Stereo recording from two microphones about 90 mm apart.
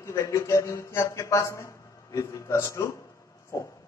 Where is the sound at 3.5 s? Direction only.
35° left (ahead or behind).